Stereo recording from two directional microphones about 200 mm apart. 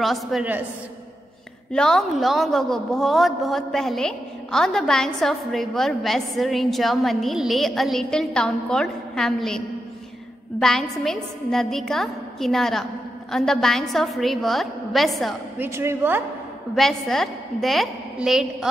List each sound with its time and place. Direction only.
0.0 s a woman's voice: centre (ahead or behind)
1.7 s a woman's voice: 5° left (ahead or behind)
10.6 s a woman's voice: centre (ahead or behind)
15.6 s a woman's voice: 10° right (ahead or behind)
16.7 s a woman's voice: centre (ahead or behind)